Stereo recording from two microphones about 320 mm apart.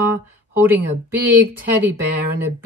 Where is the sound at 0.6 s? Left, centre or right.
Centre.